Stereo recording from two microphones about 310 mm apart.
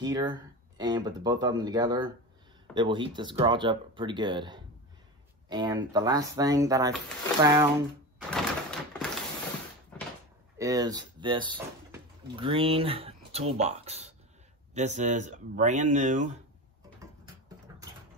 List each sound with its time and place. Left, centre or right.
0.0 s speech: centre
8.2 s a sound: centre
10.6 s speech: centre